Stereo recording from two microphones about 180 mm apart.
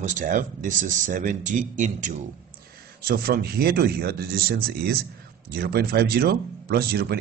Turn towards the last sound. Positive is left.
turn(degrees=-60)  # may be behind; listen again after turning